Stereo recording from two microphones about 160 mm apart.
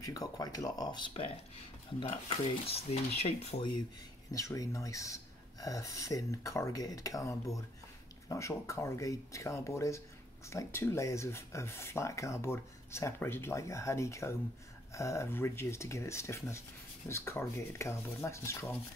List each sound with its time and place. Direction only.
0.0 s speech: 20° left (ahead or behind)
2.0 s dishes: 40° left (ahead or behind)
4.3 s speech: 20° left (ahead or behind)